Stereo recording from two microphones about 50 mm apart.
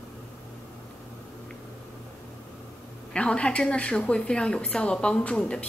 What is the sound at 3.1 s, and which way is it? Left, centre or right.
A woman's voice, left.